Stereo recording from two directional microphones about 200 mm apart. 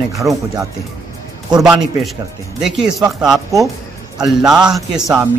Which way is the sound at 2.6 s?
Centre (ahead or behind).